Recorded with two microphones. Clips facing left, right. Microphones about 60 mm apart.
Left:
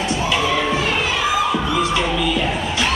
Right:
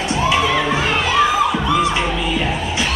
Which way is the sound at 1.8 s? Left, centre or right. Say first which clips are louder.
Right 1 dB; right.